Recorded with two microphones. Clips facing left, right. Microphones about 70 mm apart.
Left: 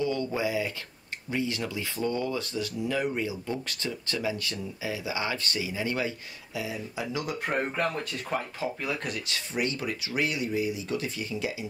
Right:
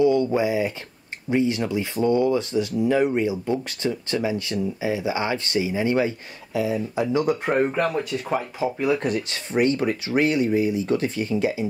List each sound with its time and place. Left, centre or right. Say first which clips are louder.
0.0 s speech: right 9 dB; right
7.4 s speech: right 7 dB; centre
9.0 s speech: right 9 dB; right